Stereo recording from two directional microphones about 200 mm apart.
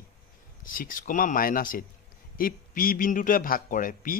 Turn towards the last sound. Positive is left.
turn(degrees=40)  # may be behind; listen again after turning